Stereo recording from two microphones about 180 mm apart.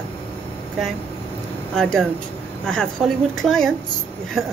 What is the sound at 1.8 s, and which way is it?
Speech, 5° left (ahead or behind).